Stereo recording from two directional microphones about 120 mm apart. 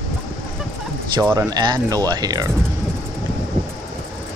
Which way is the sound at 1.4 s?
35° right (ahead or behind).